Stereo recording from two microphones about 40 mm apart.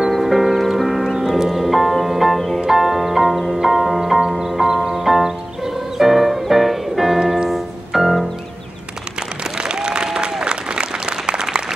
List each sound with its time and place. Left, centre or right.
0.2 s music: centre
7.4 s piano: centre
9.6 s applause: right